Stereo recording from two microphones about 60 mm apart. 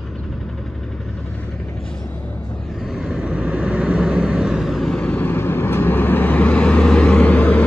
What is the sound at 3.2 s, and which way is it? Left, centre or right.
Vehicle, centre.